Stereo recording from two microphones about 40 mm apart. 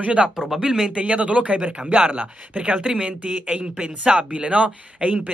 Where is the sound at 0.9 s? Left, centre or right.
Right.